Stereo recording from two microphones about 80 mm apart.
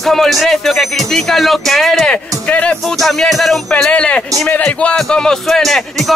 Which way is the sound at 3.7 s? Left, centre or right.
Centre.